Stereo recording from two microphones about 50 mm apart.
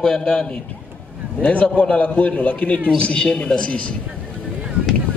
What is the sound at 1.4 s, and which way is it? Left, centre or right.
A man's voice, left.